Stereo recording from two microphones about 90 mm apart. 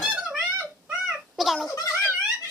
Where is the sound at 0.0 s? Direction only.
10° right (ahead or behind).